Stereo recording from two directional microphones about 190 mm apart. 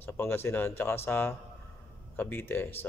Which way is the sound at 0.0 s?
10° left (ahead or behind).